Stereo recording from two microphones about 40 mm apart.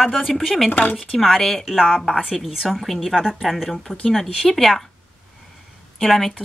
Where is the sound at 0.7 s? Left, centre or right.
Left.